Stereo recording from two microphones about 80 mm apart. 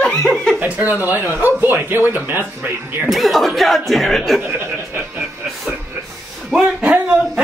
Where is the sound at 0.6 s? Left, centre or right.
Centre.